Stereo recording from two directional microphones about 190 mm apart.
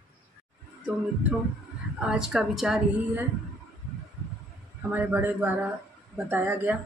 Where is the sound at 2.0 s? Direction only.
5° right (ahead or behind).